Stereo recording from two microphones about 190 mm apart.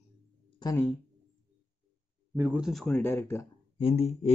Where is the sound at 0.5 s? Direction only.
20° left (ahead or behind).